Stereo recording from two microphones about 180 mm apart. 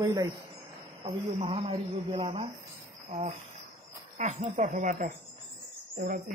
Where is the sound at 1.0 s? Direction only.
30° right (ahead or behind).